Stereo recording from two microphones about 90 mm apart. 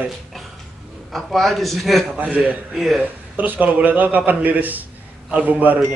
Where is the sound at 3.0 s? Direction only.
20° right (ahead or behind).